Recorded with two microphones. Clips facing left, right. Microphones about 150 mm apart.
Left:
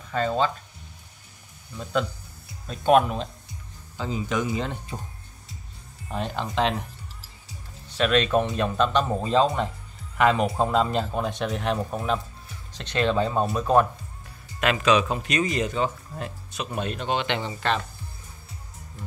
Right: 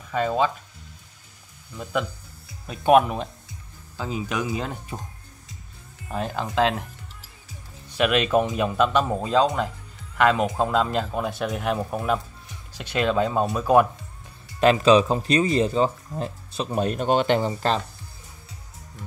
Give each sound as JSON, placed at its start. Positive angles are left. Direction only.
{"t": 0.1, "sound": "speech", "side_deg": -10}
{"t": 1.8, "sound": "speech", "side_deg": -5}
{"t": 6.0, "sound": "a man's voice", "side_deg": -5}
{"t": 7.9, "sound": "a man's voice", "side_deg": -10}
{"t": 14.6, "sound": "speech", "side_deg": -30}